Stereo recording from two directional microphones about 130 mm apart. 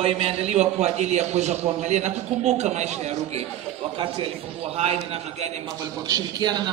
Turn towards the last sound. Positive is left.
turn(degrees=-30)  # may be behind; listen again after turning